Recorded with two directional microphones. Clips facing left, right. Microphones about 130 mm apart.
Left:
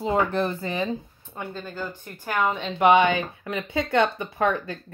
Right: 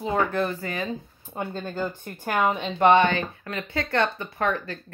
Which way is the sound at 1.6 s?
20° right (ahead or behind).